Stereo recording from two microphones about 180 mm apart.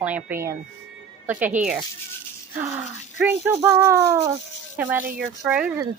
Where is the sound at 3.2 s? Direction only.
10° right (ahead or behind).